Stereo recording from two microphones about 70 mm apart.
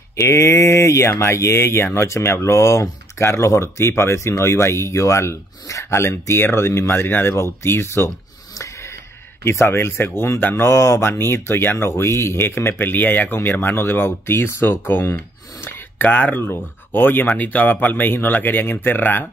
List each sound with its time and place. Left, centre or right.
0.1 s speech: left
9.4 s speech: left